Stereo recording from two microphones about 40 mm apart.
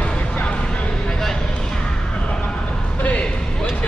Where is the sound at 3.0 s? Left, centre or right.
Left.